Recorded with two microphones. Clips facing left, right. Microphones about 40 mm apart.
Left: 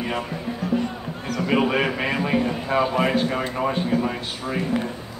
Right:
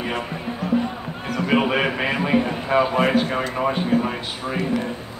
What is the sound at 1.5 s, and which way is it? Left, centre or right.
A man's voice, centre.